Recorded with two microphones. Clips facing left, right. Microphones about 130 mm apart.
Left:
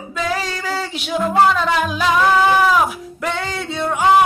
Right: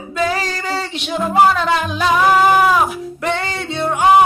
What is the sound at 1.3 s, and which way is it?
Music, 15° right (ahead or behind).